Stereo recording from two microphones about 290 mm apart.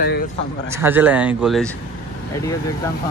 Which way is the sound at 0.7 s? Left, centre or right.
Centre.